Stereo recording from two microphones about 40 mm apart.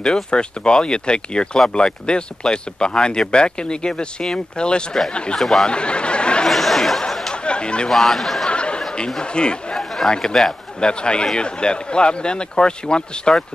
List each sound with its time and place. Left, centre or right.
0.0 s speech: left
5.4 s speech: centre
5.7 s snicker: left
6.4 s a sound: centre
7.1 s chatter: centre
7.4 s chatter: left
7.9 s speech: centre
8.5 s a sound: left
9.2 s speech: left
9.8 s chatter: centre
10.8 s speech: left